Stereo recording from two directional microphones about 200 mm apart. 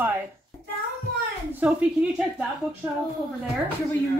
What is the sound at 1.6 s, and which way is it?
Speech, 5° right (ahead or behind).